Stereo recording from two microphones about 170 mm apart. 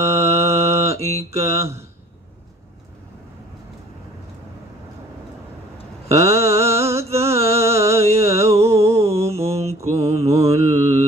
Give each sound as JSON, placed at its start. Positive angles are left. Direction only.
{"t": 0.0, "sound": "mantra", "side_deg": -15}
{"t": 6.0, "sound": "mantra", "side_deg": -15}
{"t": 7.2, "sound": "music", "side_deg": -15}
{"t": 8.2, "sound": "a sound", "side_deg": -15}
{"t": 9.5, "sound": "mantra", "side_deg": -15}